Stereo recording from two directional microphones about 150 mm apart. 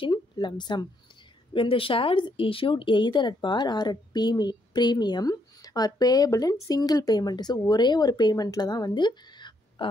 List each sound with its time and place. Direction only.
0.0 s a woman's voice: 30° left (ahead or behind)